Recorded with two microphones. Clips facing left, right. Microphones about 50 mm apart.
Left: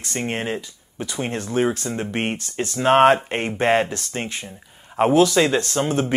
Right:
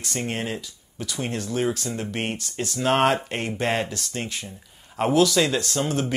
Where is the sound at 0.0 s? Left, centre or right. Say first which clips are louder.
Left 3 dB; left.